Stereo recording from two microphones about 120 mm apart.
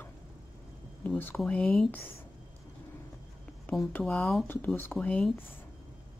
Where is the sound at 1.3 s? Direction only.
5° left (ahead or behind).